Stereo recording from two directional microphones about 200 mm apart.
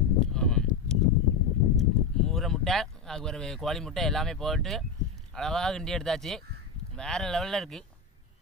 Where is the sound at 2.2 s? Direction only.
Centre (ahead or behind).